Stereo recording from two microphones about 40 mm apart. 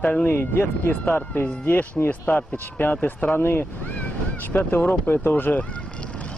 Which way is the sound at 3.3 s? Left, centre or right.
Left.